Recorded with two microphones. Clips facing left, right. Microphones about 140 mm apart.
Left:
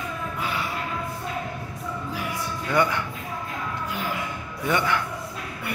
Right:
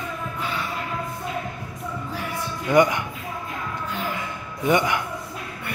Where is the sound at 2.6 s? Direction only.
15° right (ahead or behind).